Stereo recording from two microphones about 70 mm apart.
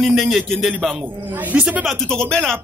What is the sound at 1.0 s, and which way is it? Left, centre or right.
Speech, right.